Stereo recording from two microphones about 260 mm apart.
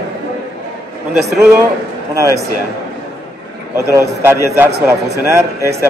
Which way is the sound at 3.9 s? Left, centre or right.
Centre.